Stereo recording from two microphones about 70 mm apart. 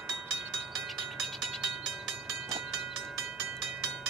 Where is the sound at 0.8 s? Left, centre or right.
Centre.